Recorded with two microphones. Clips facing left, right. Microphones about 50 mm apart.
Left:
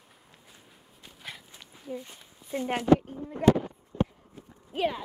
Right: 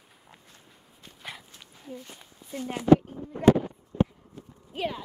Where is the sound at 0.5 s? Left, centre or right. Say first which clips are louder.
Even; centre.